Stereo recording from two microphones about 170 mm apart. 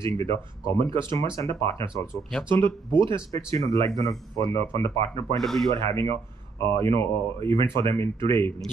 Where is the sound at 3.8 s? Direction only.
20° left (ahead or behind).